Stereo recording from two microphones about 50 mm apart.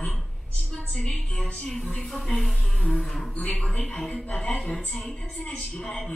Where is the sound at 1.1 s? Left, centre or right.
Centre.